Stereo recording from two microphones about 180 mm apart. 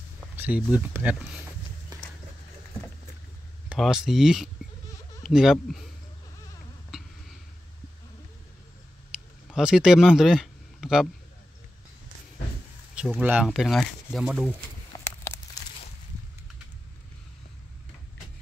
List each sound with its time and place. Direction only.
0.4 s speech: 5° right (ahead or behind)
3.6 s speech: centre (ahead or behind)
6.9 s a sound: 5° right (ahead or behind)
9.5 s speech: 5° right (ahead or behind)
12.9 s speech: 5° right (ahead or behind)
15.0 s a sound: 15° left (ahead or behind)